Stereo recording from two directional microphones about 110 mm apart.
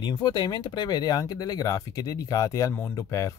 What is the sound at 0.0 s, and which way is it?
Speech, 40° left (ahead or behind).